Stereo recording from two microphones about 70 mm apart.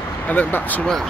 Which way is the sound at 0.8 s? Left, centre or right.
Centre.